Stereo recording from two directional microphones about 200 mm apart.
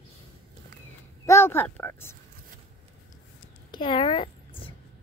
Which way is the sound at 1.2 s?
15° left (ahead or behind).